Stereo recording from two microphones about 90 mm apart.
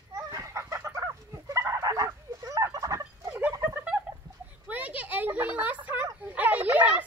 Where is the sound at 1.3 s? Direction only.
35° right (ahead or behind).